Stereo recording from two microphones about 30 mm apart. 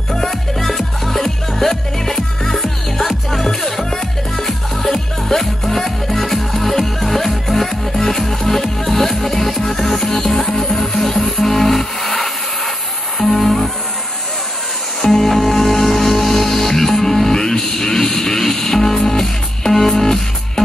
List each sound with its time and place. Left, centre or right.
0.7 s music: centre
1.2 s music: centre
15.0 s music: centre